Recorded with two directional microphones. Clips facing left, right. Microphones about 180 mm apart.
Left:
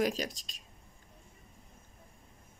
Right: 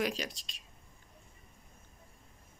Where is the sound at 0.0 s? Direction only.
45° left (ahead or behind).